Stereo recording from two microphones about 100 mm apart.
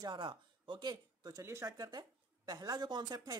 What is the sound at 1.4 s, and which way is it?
Speech, 30° right (ahead or behind).